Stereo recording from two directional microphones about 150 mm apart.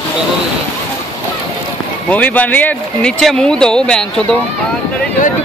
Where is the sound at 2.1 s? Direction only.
10° left (ahead or behind).